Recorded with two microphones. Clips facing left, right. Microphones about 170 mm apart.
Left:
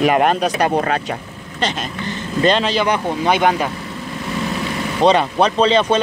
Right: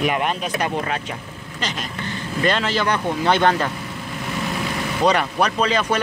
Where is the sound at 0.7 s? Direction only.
55° left (ahead or behind).